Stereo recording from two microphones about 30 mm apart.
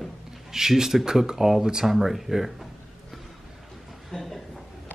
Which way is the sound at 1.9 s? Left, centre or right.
Centre.